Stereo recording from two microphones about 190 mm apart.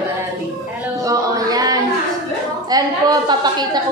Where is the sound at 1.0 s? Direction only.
20° right (ahead or behind).